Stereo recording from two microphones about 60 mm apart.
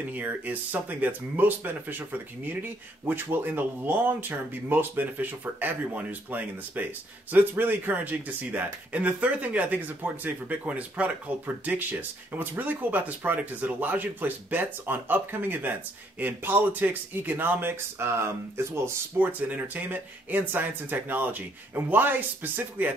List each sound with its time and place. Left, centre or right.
0.1 s speech: right
18.0 s speech: right
19.1 s speech: right